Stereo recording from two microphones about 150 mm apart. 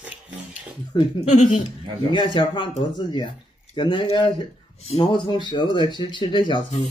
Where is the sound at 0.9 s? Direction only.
30° left (ahead or behind).